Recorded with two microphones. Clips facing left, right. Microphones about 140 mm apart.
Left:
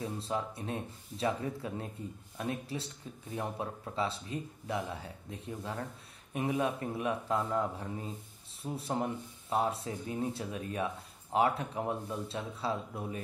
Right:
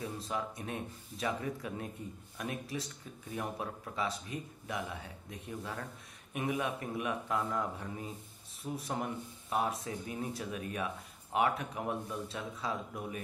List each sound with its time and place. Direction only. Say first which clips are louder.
0.0 s speech: left 2 dB; 30° left (ahead or behind)